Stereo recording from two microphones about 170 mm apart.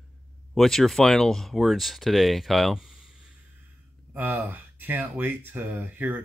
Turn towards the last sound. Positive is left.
turn(degrees=-10)  # may be behind; listen again after turning